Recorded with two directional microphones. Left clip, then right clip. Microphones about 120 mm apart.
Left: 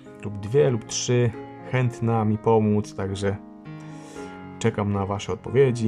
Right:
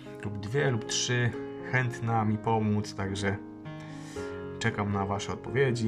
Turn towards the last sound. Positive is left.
turn(degrees=20)  # may be behind; listen again after turning